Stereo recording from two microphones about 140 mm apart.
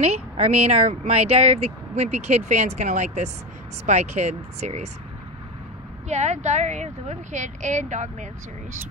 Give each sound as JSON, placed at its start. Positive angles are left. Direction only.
{"t": 0.0, "sound": "speech", "side_deg": -50}
{"t": 6.0, "sound": "speech", "side_deg": -55}